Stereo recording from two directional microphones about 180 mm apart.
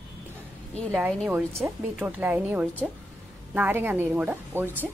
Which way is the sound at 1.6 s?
10° right (ahead or behind).